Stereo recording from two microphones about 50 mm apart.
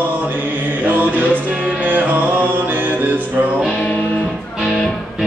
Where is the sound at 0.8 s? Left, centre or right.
Right.